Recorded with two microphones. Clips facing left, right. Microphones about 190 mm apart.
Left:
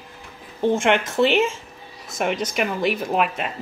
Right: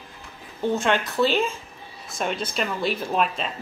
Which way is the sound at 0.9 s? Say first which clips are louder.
Left 2 dB; 20° left (ahead or behind).